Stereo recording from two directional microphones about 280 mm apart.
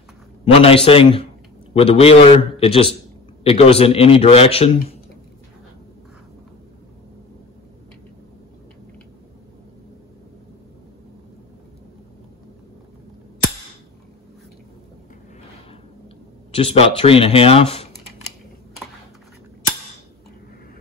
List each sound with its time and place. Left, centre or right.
0.5 s a man's voice: centre
16.5 s a man's voice: centre